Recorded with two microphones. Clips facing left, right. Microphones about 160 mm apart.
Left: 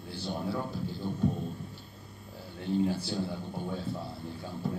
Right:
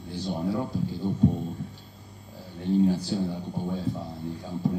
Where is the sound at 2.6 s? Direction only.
15° right (ahead or behind).